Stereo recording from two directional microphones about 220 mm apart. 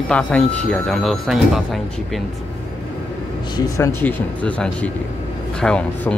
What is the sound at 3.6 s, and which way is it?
Speech, 10° left (ahead or behind).